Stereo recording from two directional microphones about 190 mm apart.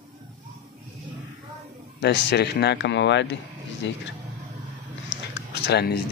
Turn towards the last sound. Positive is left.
turn(degrees=60)  # may be behind; listen again after turning